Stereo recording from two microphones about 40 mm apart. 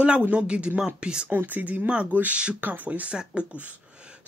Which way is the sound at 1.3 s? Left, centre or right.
Right.